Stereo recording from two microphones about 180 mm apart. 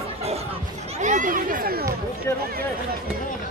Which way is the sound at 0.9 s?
45° right (ahead or behind).